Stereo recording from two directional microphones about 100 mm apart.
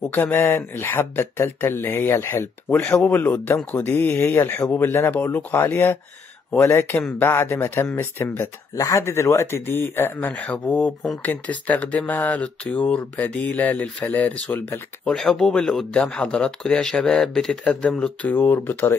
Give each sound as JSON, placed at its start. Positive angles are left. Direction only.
{"t": 0.1, "sound": "speech", "side_deg": 20}